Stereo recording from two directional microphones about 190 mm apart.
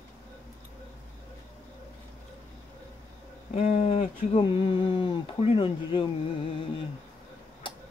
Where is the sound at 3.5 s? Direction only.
35° left (ahead or behind).